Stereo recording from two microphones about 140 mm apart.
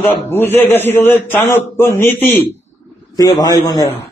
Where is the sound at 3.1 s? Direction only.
25° left (ahead or behind).